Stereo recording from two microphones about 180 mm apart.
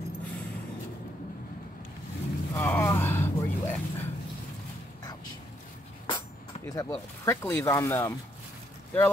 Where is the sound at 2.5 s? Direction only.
15° left (ahead or behind).